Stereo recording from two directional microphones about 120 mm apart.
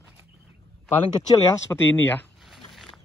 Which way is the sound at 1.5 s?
20° left (ahead or behind).